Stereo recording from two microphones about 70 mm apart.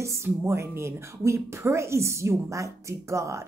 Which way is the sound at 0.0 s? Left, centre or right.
Right.